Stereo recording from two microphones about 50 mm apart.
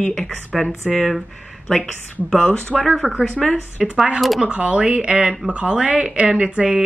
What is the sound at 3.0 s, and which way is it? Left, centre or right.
Speech, right.